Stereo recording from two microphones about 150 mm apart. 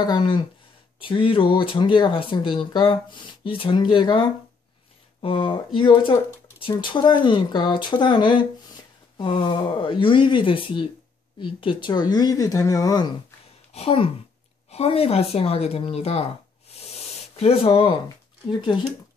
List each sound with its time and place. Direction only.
0.0 s speech: 30° left (ahead or behind)
5.2 s speech: 35° left (ahead or behind)
13.7 s speech: 40° left (ahead or behind)